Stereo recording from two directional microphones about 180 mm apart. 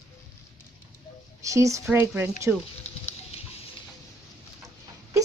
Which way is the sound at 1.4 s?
15° right (ahead or behind).